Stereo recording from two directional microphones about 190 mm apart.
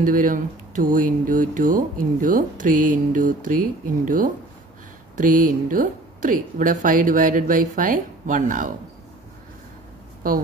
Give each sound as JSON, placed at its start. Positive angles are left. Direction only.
{"t": 0.0, "sound": "speech", "side_deg": -45}